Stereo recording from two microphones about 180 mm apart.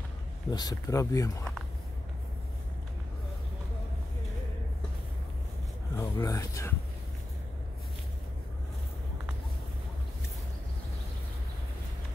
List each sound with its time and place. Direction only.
0.5 s speech: 20° left (ahead or behind)
5.9 s speech: 15° left (ahead or behind)